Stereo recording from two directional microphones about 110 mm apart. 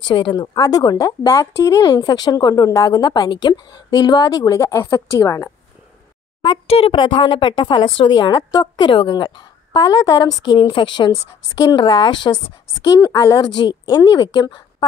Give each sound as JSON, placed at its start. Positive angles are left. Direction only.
{"t": 0.1, "sound": "speech", "side_deg": 45}
{"t": 6.7, "sound": "a woman's voice", "side_deg": 55}
{"t": 8.4, "sound": "speech", "side_deg": 30}
{"t": 8.7, "sound": "a woman's voice", "side_deg": 45}